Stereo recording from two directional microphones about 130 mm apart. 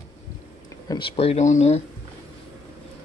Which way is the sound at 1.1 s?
55° left (ahead or behind).